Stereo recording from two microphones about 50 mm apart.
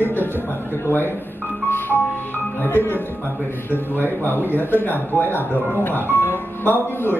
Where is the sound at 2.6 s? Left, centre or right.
Left.